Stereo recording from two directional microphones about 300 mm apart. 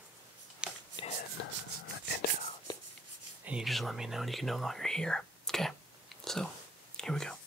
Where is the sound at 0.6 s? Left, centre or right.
Centre.